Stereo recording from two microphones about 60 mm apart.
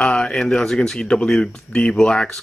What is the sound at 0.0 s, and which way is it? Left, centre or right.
Speech, centre.